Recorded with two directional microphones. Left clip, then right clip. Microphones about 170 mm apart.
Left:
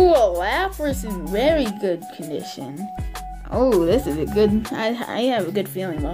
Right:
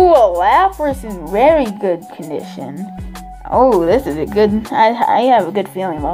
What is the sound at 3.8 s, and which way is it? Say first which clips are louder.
Speech: right 5 dB; 50° left (ahead or behind).